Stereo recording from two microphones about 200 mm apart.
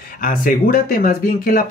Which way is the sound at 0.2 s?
45° left (ahead or behind).